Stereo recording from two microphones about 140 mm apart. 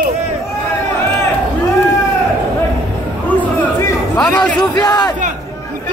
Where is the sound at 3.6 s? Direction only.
10° left (ahead or behind).